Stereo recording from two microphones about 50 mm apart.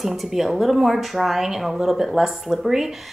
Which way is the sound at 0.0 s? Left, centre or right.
Centre.